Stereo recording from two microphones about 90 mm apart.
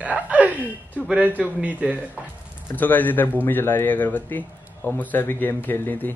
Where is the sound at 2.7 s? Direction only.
20° left (ahead or behind).